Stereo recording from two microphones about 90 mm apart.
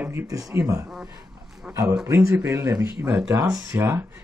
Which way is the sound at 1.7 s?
25° right (ahead or behind).